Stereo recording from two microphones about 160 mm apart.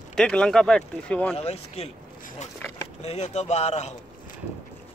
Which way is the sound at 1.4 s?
40° left (ahead or behind).